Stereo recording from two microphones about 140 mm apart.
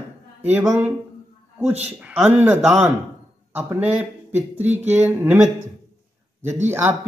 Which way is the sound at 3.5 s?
15° right (ahead or behind).